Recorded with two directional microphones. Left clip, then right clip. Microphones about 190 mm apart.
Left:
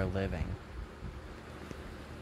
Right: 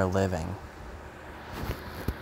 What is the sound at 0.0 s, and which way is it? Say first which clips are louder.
Speech: right 9 dB; 15° right (ahead or behind).